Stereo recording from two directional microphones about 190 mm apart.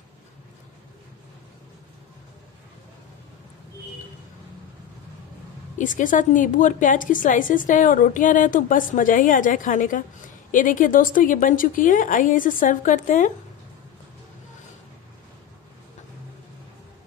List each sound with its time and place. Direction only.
5.8 s a woman's voice: 45° left (ahead or behind)